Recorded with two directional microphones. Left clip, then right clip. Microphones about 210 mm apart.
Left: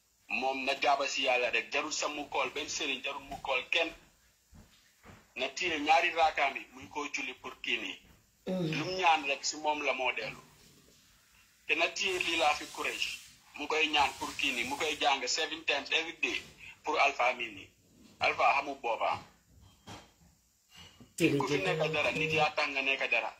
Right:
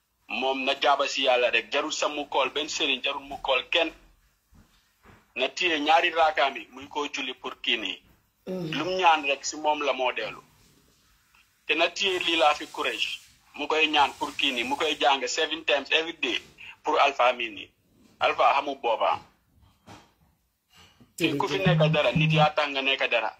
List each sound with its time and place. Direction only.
0.3 s a man's voice: 40° right (ahead or behind)
5.3 s a man's voice: 45° right (ahead or behind)
11.6 s a man's voice: 40° right (ahead or behind)
21.5 s a man's voice: 40° right (ahead or behind)